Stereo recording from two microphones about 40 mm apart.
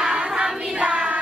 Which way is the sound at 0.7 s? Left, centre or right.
Right.